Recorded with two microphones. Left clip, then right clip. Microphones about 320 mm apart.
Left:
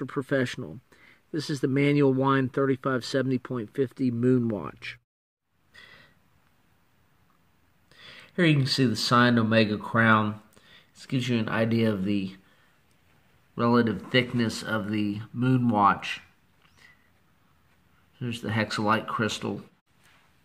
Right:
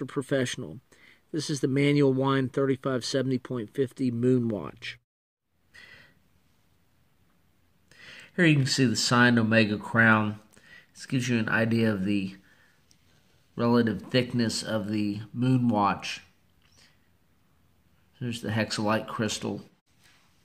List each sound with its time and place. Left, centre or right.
0.0 s speech: centre
5.7 s a sound: centre
7.9 s speech: centre
13.6 s speech: centre
18.2 s speech: centre